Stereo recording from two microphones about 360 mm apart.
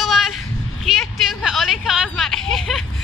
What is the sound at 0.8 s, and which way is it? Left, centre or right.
Speech, centre.